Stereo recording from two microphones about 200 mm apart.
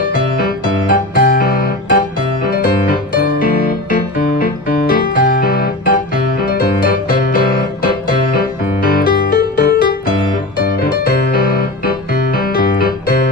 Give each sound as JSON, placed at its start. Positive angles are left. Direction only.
{"t": 0.0, "sound": "music", "side_deg": 50}